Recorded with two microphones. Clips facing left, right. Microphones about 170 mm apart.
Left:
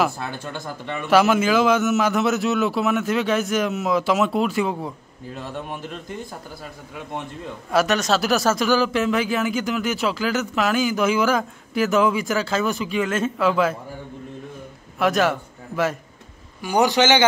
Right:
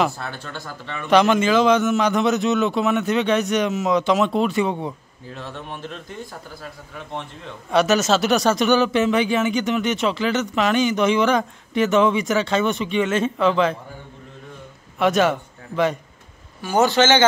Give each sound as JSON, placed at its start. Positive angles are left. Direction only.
{"t": 0.3, "sound": "speech", "side_deg": 15}
{"t": 1.0, "sound": "speech", "side_deg": 5}
{"t": 5.3, "sound": "speech", "side_deg": 10}
{"t": 7.7, "sound": "speech", "side_deg": 0}
{"t": 15.0, "sound": "a man's voice", "side_deg": 0}
{"t": 16.6, "sound": "speech", "side_deg": 15}